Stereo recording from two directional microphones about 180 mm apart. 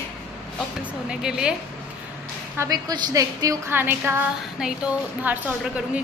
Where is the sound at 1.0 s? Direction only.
5° right (ahead or behind).